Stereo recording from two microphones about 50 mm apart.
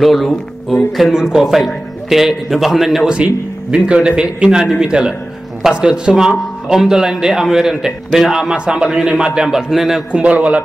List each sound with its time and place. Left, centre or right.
0.0 s a man's voice: centre
3.7 s a man's voice: centre
10.1 s a man's voice: right